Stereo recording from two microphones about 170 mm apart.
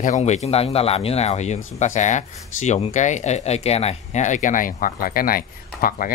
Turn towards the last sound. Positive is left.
turn(degrees=55)  # may be behind; listen again after turning